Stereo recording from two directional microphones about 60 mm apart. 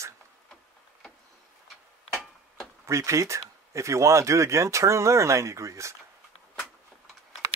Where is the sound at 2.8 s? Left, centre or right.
Right.